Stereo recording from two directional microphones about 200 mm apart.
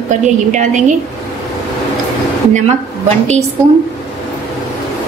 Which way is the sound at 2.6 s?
35° right (ahead or behind).